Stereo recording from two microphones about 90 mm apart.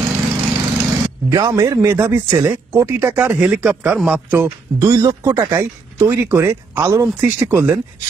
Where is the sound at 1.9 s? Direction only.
25° right (ahead or behind).